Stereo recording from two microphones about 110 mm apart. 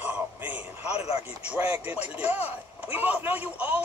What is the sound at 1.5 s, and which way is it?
A man's voice, 15° right (ahead or behind).